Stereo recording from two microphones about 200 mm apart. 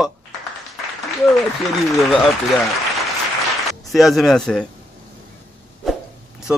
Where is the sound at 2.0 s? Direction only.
Centre (ahead or behind).